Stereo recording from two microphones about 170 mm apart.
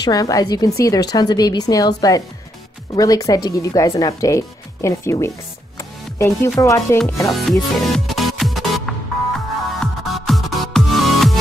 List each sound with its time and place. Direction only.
0.0 s speech: 20° left (ahead or behind)
5.8 s music: 15° left (ahead or behind)
6.6 s speech: 20° left (ahead or behind)
7.3 s music: centre (ahead or behind)